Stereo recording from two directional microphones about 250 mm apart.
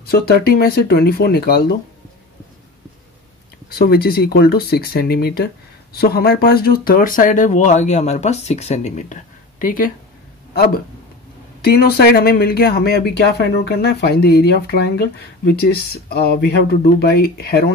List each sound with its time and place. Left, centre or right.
0.0 s speech: left
3.7 s speech: left